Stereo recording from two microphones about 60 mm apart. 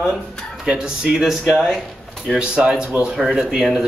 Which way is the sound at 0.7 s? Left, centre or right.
Centre.